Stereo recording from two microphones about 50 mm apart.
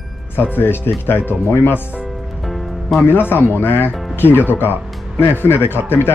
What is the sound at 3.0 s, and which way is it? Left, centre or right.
Speech, left.